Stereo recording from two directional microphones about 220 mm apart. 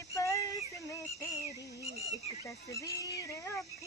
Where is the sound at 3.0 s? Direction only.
15° left (ahead or behind).